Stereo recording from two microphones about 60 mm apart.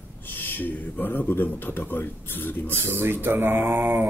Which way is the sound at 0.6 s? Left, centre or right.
Left.